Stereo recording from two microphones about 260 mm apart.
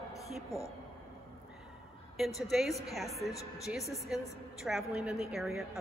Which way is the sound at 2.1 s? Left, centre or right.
Centre.